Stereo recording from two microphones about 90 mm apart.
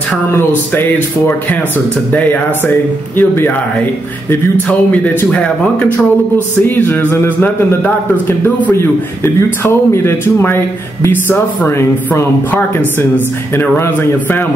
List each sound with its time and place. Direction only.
0.3 s speech: 25° left (ahead or behind)
3.2 s speech: 20° left (ahead or behind)
4.6 s speech: 15° left (ahead or behind)